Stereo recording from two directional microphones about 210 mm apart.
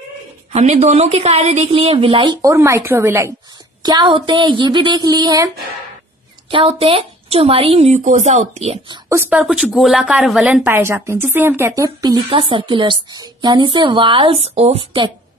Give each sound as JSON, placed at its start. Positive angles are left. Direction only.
{"t": 0.5, "sound": "a woman's voice", "side_deg": -35}
{"t": 6.5, "sound": "a woman's voice", "side_deg": -25}
{"t": 9.2, "sound": "a woman's voice", "side_deg": -5}